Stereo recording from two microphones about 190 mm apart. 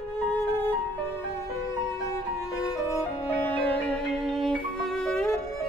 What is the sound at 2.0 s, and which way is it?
Violin, 15° left (ahead or behind).